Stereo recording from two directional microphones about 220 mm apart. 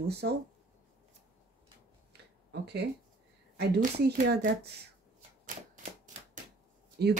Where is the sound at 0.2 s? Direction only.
50° right (ahead or behind).